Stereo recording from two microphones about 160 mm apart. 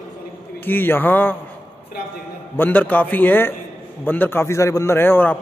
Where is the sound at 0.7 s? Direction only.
10° left (ahead or behind).